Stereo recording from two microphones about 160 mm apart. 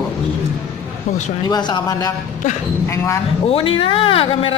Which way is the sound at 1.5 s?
25° left (ahead or behind).